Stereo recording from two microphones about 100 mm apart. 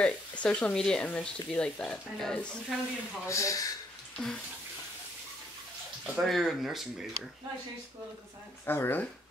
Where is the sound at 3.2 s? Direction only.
30° left (ahead or behind).